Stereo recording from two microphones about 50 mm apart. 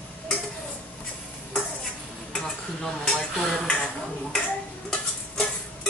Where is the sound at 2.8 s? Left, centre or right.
Centre.